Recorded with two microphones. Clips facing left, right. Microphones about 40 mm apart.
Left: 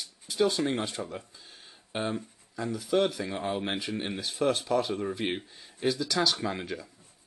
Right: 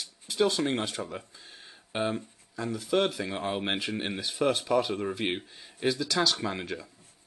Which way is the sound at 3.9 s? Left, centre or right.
Centre.